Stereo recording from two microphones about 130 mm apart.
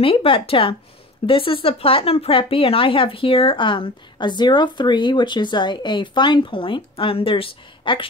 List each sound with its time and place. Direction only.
0.0 s speech: 45° left (ahead or behind)